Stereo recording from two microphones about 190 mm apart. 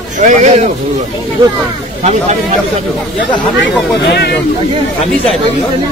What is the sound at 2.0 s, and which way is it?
Speech, 35° right (ahead or behind).